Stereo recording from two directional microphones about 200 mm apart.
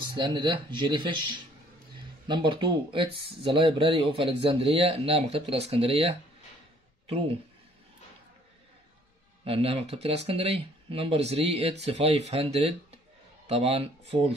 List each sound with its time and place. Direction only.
0.1 s speech: 20° right (ahead or behind)
9.4 s speech: 30° right (ahead or behind)